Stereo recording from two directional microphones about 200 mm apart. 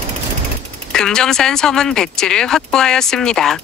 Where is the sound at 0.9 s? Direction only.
5° left (ahead or behind).